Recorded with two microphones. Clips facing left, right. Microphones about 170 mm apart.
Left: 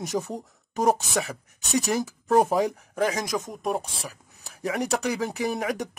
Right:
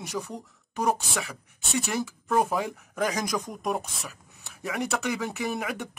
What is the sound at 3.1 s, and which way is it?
Speech, 20° left (ahead or behind).